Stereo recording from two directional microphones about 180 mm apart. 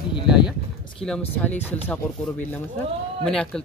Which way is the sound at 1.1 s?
10° left (ahead or behind).